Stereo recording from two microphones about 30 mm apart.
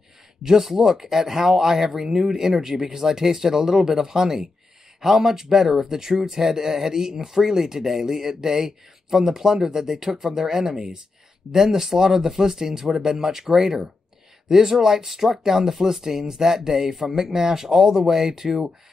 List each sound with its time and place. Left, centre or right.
0.6 s speech: centre
17.1 s speech: centre